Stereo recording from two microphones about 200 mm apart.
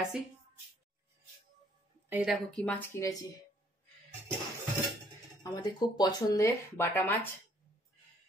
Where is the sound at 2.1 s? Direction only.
5° right (ahead or behind); by 3.2 s 15° left (ahead or behind).